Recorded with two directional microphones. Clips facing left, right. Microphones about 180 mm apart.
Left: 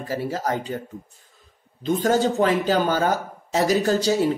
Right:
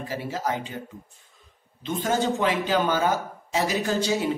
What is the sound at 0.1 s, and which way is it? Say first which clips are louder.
Speech: left 4 dB; 40° left (ahead or behind).